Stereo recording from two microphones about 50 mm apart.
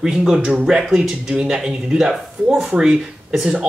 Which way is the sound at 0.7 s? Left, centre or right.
Centre.